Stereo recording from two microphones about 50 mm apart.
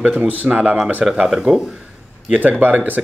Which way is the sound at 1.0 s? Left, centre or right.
Centre.